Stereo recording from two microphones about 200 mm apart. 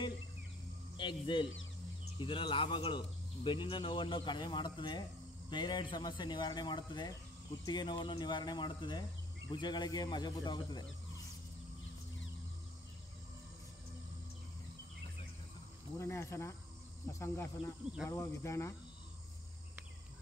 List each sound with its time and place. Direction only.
0.9 s speech: 25° left (ahead or behind)
16.0 s speech: 15° left (ahead or behind)